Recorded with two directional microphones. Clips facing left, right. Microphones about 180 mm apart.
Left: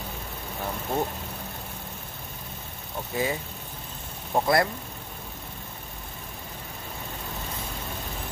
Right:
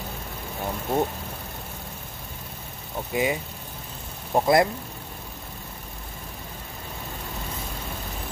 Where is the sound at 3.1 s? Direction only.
15° right (ahead or behind).